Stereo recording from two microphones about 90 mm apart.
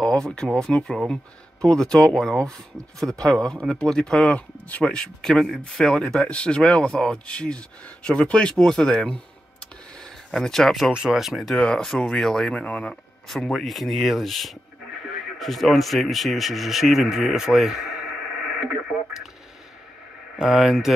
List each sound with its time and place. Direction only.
0.0 s speech: 10° left (ahead or behind)
10.9 s speech: 10° right (ahead or behind)
11.5 s speech: 10° left (ahead or behind); by 18.0 s 5° right (ahead or behind)
18.7 s radio: 5° right (ahead or behind)
20.3 s speech: 5° right (ahead or behind)